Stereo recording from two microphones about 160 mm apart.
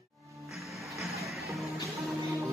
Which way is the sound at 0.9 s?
Centre (ahead or behind).